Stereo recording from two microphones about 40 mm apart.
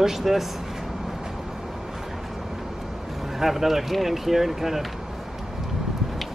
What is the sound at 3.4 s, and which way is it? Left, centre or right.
Speech, centre.